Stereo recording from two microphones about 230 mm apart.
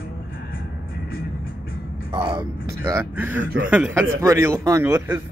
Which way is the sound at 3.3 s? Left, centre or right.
Right.